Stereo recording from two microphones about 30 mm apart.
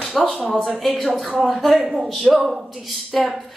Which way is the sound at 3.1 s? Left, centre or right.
Centre.